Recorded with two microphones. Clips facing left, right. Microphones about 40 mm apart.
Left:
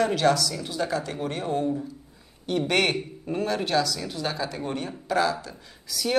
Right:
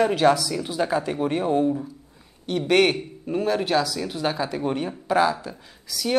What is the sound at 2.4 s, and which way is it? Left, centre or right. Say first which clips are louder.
Speech: right 4 dB; centre.